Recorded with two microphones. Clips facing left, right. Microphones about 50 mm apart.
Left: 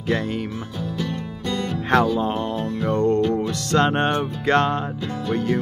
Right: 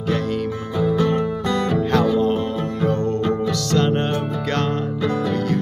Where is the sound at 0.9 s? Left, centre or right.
Right.